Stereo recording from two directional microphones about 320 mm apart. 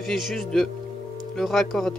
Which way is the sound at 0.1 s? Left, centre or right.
Centre.